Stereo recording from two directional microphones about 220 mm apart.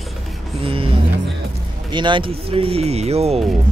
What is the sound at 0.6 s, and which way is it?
Speech, 25° right (ahead or behind).